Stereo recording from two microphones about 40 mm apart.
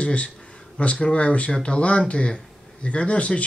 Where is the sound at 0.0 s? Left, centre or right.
Left.